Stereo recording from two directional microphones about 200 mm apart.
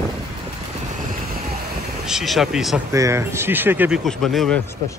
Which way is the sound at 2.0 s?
Centre (ahead or behind).